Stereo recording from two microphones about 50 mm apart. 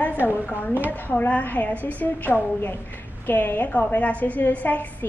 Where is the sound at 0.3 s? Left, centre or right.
Left.